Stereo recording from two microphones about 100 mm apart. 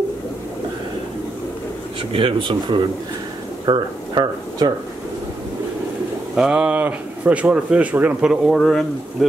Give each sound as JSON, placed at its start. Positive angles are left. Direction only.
{"t": 2.0, "sound": "speech", "side_deg": -60}
{"t": 6.3, "sound": "speech", "side_deg": -10}
{"t": 8.2, "sound": "speech", "side_deg": -5}